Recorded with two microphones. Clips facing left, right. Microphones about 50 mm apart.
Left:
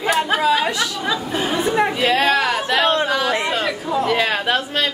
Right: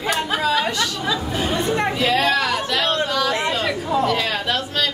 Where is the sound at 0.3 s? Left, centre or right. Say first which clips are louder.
Left 3 dB; centre.